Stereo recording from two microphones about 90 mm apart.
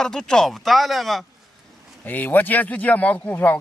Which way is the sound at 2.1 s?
20° left (ahead or behind).